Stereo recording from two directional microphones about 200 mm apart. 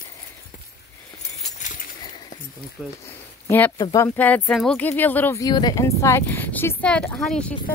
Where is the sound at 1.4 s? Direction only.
40° left (ahead or behind).